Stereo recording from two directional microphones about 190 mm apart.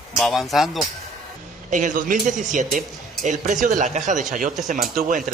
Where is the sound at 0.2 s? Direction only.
Centre (ahead or behind).